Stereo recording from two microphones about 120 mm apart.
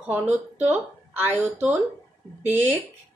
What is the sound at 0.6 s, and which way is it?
Speech, 15° right (ahead or behind).